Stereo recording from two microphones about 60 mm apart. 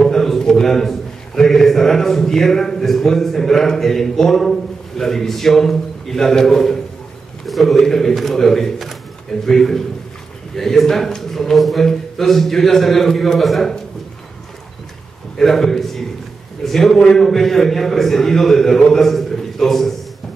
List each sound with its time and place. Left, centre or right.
0.0 s a man's voice: centre
15.3 s a man's voice: centre